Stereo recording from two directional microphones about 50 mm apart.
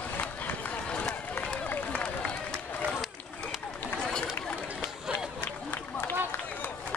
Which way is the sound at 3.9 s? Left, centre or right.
Centre.